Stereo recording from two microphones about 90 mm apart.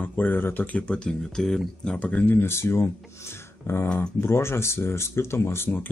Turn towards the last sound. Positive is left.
turn(degrees=25)  # may be behind; listen again after turning